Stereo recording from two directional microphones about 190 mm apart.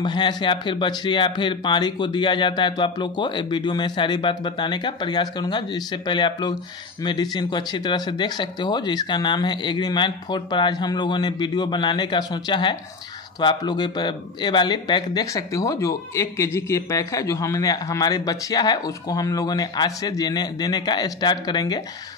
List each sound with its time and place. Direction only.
0.0 s speech: 25° left (ahead or behind)